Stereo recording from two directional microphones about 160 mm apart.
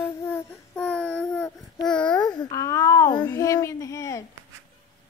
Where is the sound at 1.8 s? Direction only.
5° left (ahead or behind).